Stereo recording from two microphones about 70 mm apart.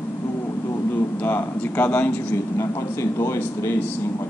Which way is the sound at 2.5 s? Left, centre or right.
Left.